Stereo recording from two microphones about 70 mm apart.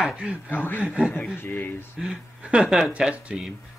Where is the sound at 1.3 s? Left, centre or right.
Left.